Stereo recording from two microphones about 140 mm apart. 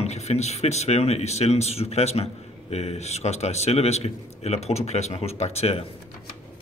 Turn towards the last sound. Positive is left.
turn(degrees=45)  # may be behind; listen again after turning